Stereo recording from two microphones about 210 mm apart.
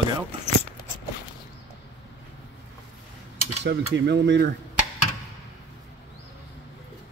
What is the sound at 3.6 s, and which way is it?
Speech, 55° right (ahead or behind).